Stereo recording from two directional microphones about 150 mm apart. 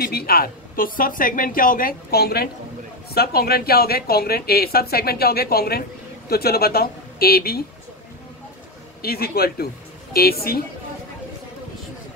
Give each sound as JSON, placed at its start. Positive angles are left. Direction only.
{"t": 0.0, "sound": "a woman's voice", "side_deg": 85}
{"t": 9.0, "sound": "a woman's voice", "side_deg": 90}